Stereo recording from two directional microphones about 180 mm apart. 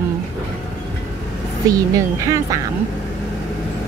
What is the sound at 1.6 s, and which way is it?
Speech, 20° right (ahead or behind).